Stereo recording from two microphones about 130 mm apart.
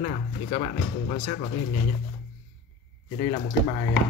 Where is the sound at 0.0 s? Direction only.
65° left (ahead or behind).